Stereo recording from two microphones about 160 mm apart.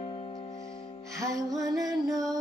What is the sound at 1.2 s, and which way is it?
Music, 20° right (ahead or behind).